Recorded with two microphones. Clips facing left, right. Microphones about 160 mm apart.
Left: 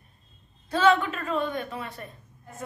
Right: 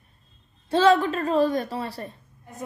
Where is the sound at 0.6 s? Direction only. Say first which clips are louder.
Right 3 dB; 30° right (ahead or behind).